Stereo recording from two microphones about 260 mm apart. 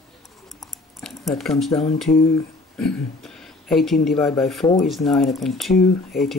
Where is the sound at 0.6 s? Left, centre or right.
Centre.